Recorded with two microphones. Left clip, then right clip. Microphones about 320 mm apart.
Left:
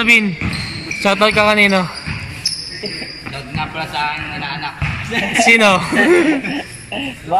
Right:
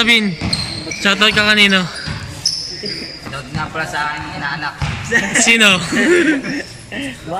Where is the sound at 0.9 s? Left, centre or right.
Centre.